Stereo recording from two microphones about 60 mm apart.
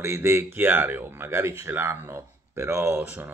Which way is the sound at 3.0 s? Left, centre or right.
Right.